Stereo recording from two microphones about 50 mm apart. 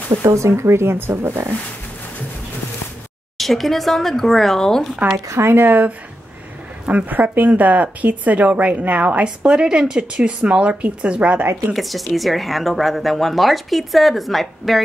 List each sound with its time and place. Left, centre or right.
0.2 s speech: right
3.3 s speech: centre
5.3 s speech: right
5.7 s speech: right
11.7 s speech: centre